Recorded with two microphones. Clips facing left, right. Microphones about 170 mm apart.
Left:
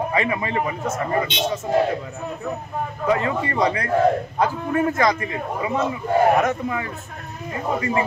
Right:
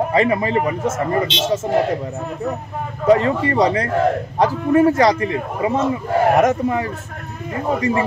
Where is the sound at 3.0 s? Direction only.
35° right (ahead or behind).